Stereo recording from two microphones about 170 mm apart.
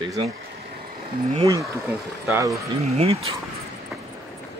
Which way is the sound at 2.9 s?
35° right (ahead or behind).